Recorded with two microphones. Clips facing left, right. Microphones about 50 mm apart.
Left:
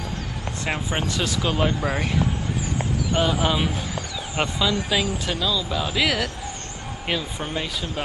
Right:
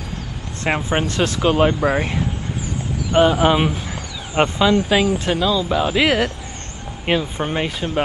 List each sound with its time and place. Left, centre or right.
0.7 s speech: right
1.4 s speech: right